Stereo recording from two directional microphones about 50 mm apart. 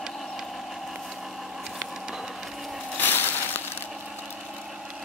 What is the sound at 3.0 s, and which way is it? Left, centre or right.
Crushing, left.